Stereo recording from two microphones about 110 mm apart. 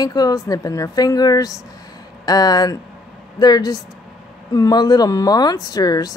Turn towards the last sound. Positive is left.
turn(degrees=35)  # may be behind; listen again after turning